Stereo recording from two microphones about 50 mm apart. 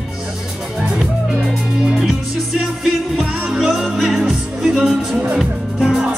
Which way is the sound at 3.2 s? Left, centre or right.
Centre.